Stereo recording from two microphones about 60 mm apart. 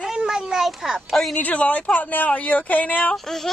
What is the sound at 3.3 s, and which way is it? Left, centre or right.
Speech, centre.